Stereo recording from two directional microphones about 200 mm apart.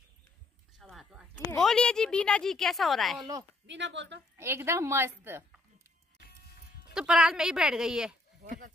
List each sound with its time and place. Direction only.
0.7 s a sound: centre (ahead or behind)
1.5 s a woman's voice: 5° left (ahead or behind)
3.6 s a woman's voice: 60° right (ahead or behind)
4.4 s a woman's voice: 15° right (ahead or behind)
6.9 s a woman's voice: 5° right (ahead or behind)